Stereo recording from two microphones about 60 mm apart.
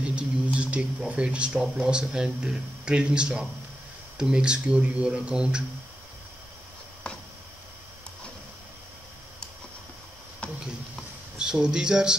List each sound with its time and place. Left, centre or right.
0.0 s speech: centre
10.4 s a sound: centre
11.3 s speech: centre